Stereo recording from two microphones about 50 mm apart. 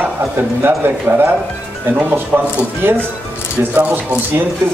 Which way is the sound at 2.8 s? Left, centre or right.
Right.